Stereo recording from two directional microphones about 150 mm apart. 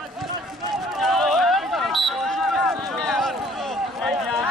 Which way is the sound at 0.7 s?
Centre (ahead or behind).